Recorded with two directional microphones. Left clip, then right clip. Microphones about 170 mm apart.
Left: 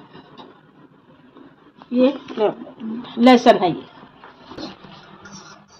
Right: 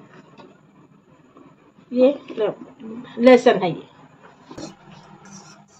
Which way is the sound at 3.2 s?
30° left (ahead or behind).